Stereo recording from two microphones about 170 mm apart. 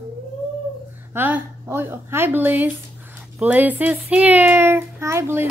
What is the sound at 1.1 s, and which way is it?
A child's voice, 10° right (ahead or behind).